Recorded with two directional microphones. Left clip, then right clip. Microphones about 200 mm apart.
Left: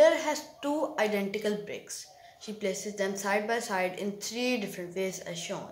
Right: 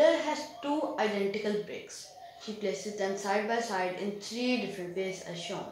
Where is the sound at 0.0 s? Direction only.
25° left (ahead or behind).